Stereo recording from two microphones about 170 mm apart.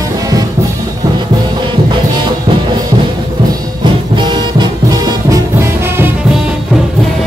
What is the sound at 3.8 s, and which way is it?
Music, 25° right (ahead or behind).